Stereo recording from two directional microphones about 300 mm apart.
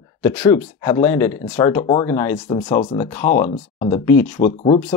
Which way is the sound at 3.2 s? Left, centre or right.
Left.